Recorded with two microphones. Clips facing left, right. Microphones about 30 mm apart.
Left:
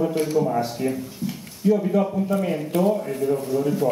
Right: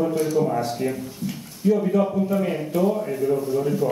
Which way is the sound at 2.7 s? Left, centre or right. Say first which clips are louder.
Left 1 dB; left.